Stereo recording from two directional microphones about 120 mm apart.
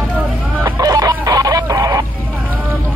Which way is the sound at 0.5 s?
15° right (ahead or behind).